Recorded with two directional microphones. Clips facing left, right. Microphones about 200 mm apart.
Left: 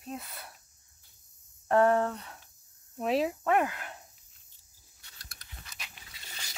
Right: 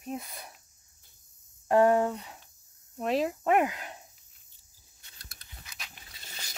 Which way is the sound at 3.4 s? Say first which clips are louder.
Right 2 dB; 20° right (ahead or behind).